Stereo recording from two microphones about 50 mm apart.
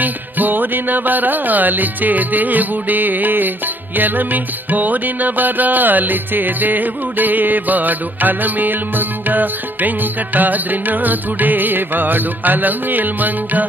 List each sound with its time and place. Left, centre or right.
0.0 s music: right